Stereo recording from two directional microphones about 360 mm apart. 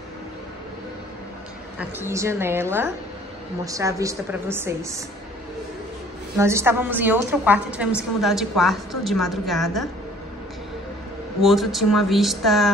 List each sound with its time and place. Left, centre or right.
1.8 s a woman's voice: centre
6.3 s a woman's voice: centre
11.4 s a woman's voice: centre